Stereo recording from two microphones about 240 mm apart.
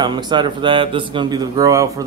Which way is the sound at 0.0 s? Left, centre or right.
Centre.